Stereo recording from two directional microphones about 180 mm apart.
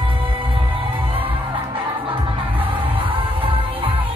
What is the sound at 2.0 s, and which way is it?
Music, 30° right (ahead or behind).